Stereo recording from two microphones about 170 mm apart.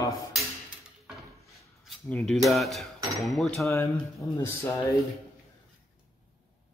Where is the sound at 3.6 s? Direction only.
15° left (ahead or behind).